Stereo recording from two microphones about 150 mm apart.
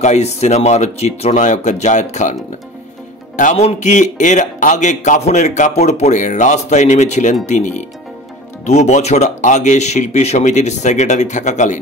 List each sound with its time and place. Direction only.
0.0 s speech: 50° left (ahead or behind)
3.3 s music: 60° left (ahead or behind)
3.6 s speech: 55° left (ahead or behind)